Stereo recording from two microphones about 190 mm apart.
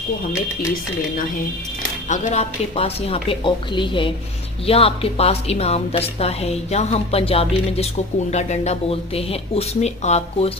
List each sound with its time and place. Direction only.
2.0 s a woman's voice: 40° left (ahead or behind)